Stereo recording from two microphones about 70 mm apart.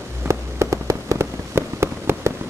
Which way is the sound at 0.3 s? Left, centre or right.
Right.